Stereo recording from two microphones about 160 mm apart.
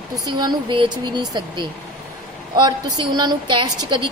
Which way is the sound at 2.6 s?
25° right (ahead or behind).